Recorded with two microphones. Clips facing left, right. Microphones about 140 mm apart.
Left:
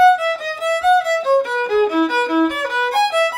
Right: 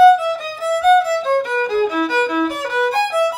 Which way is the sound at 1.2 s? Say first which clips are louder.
Left 1 dB; 10° left (ahead or behind).